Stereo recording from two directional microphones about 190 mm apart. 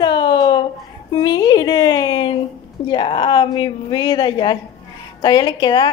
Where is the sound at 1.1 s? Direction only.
20° left (ahead or behind).